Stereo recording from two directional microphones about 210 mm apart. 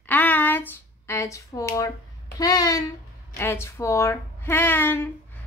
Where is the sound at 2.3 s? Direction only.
15° left (ahead or behind).